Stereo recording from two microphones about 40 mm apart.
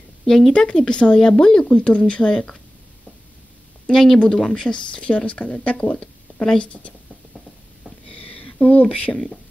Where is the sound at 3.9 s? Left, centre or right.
Centre; by 7.0 s left.